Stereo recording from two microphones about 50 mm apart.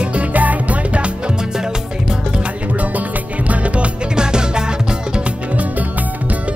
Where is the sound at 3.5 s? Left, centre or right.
Right.